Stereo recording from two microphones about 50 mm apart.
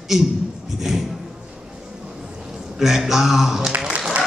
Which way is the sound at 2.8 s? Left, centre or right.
Centre.